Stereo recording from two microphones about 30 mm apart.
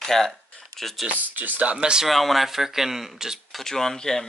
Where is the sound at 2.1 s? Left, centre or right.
Centre.